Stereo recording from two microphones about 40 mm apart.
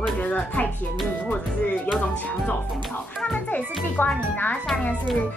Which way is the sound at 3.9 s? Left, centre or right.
Left.